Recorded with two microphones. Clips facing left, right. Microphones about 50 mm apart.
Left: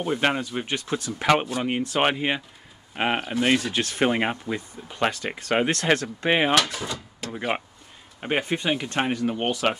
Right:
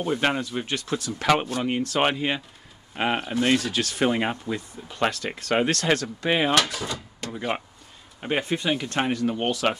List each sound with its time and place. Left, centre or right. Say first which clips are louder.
0.0 s speech: even; centre
3.7 s speech: left 1 dB; left
6.9 s speech: even; centre
7.3 s speech: left 1 dB; left